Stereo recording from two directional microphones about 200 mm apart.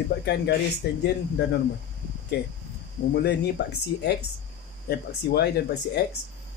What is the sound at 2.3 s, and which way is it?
Speech, 55° left (ahead or behind).